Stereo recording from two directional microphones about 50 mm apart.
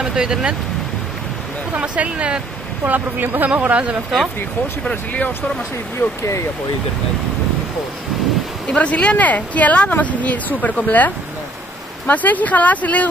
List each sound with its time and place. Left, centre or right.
0.0 s speech: centre
1.7 s speech: right
2.9 s speech: right
3.4 s speech: right
4.8 s speech: left
8.7 s speech: left